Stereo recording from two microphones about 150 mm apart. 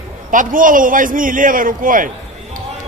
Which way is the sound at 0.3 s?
65° right (ahead or behind).